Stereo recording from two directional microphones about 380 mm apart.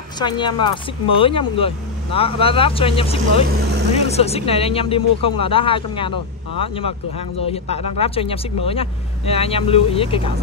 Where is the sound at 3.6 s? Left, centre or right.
Right.